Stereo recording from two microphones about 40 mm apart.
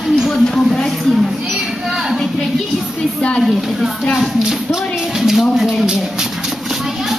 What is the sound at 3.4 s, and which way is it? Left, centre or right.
A woman's voice, centre.